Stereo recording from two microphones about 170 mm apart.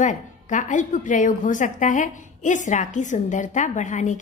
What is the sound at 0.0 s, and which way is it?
A woman's voice, 45° left (ahead or behind).